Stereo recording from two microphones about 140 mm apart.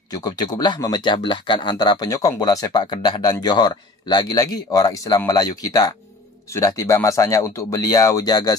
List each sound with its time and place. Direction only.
0.1 s speech: 30° left (ahead or behind)